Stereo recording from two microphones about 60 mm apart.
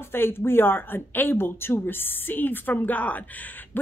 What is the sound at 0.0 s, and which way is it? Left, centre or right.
A woman's voice, left.